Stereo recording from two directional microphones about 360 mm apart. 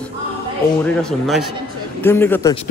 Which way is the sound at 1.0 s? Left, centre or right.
Centre.